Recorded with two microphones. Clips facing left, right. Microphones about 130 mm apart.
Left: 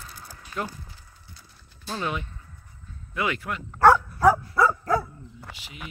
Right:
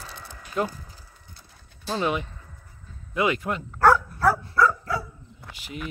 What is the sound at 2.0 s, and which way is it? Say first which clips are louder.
Speech: right 4 dB; 20° right (ahead or behind).